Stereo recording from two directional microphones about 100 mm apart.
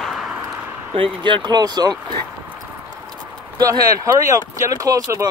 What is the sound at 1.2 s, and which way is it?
Speech, 50° right (ahead or behind).